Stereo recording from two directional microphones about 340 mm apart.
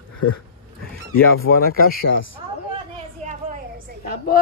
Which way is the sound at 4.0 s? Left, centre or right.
Left.